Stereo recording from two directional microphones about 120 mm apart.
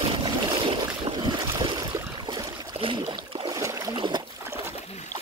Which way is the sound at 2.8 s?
50° right (ahead or behind).